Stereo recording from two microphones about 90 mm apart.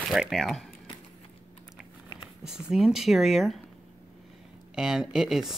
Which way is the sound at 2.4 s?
5° right (ahead or behind).